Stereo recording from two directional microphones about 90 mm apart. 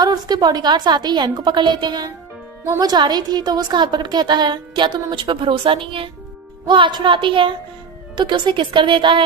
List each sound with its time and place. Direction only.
0.0 s a woman's voice: 50° right (ahead or behind); by 6.0 s 80° right
6.7 s a woman's voice: 60° right (ahead or behind)